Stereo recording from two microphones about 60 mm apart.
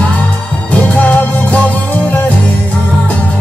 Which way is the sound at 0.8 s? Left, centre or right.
Left.